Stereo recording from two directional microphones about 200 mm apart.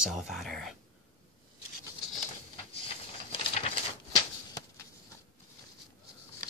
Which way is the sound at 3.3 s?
30° left (ahead or behind).